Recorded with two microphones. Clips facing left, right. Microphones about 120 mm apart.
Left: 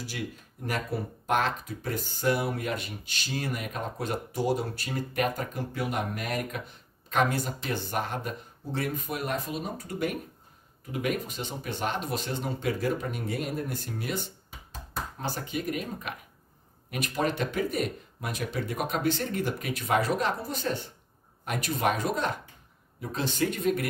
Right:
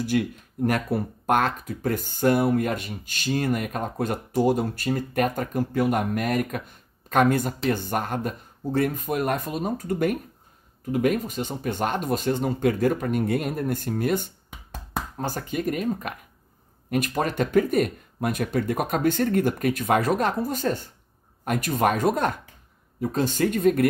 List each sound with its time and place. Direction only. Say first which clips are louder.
0.1 s speech: right 12 dB; 60° right (ahead or behind)